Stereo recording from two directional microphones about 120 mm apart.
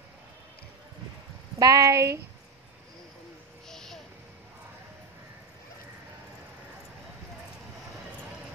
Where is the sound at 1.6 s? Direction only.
30° right (ahead or behind).